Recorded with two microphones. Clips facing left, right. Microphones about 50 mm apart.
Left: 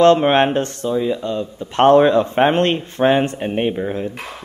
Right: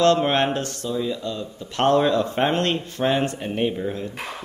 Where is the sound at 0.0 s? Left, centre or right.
Left.